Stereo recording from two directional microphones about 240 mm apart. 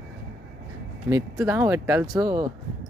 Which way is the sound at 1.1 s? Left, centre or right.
Centre.